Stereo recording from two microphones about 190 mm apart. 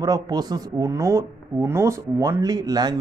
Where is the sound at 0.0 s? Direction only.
20° right (ahead or behind).